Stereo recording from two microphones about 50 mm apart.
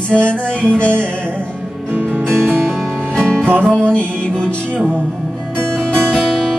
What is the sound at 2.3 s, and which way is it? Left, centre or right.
Music, centre.